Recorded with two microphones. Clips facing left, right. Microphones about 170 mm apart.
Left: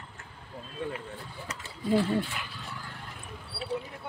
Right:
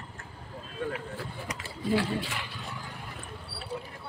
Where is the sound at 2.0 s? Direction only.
90° right.